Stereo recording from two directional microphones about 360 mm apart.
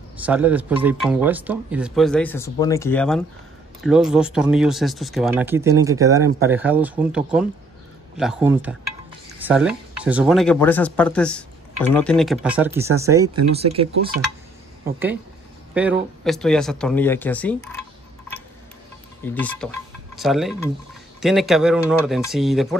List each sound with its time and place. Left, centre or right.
0.2 s speech: centre
14.9 s speech: centre
19.2 s speech: centre